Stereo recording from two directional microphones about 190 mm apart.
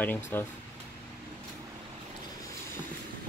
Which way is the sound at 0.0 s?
10° left (ahead or behind).